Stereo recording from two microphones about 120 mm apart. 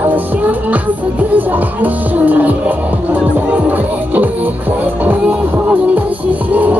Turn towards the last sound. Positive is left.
turn(degrees=-15)  # may be behind; listen again after turning